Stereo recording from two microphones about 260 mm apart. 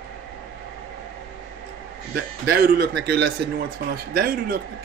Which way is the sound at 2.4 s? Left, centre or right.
Right.